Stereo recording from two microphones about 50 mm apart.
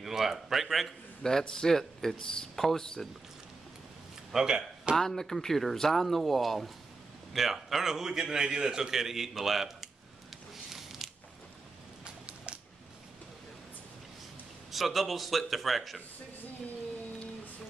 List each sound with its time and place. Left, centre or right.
0.0 s speech: centre
1.5 s speech: centre
4.3 s a man's voice: centre
4.9 s a man's voice: centre
10.5 s a sound: centre
12.0 s a sound: centre
14.7 s speech: centre